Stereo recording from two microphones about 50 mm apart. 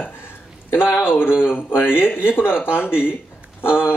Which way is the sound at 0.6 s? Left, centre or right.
Left.